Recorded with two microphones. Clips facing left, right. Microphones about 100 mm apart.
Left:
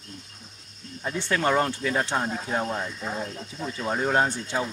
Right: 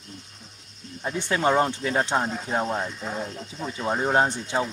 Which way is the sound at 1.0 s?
15° right (ahead or behind).